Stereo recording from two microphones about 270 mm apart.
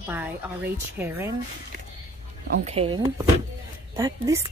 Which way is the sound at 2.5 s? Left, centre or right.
Right.